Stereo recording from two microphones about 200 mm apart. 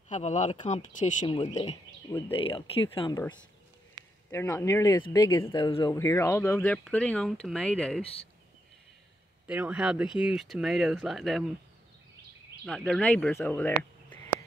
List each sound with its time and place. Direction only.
0.1 s speech: 35° left (ahead or behind)
4.3 s speech: 15° left (ahead or behind)
5.9 s speech: 15° left (ahead or behind)
9.5 s speech: 5° right (ahead or behind)
12.6 s speech: centre (ahead or behind)